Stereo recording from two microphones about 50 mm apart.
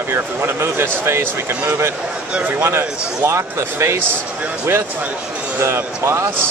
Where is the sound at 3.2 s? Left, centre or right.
Right.